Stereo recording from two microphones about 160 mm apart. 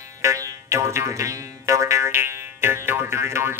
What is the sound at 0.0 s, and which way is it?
Music, 20° right (ahead or behind).